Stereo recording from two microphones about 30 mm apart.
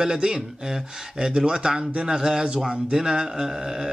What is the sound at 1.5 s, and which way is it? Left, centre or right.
A man's voice, right.